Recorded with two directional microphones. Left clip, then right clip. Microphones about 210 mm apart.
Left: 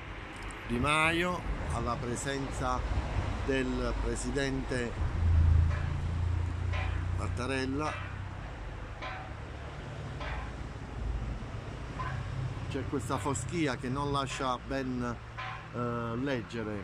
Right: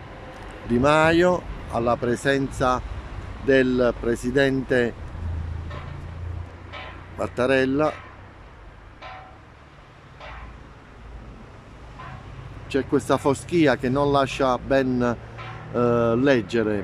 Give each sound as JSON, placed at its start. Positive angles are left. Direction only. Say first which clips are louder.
{"t": 0.8, "sound": "speech", "louder": "right 11 dB", "side_deg": -45}
{"t": 7.2, "sound": "speech", "louder": "right 15 dB", "side_deg": -40}
{"t": 12.6, "sound": "speech", "louder": "right 14 dB", "side_deg": -45}